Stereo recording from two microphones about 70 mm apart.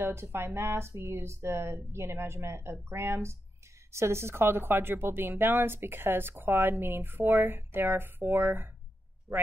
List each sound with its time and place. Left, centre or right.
0.0 s speech: right